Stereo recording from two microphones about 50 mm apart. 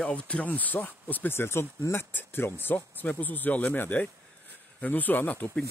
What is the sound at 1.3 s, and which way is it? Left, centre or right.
Speech, left.